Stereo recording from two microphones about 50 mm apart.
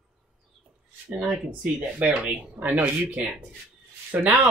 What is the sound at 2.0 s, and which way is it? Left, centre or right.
Speech, right.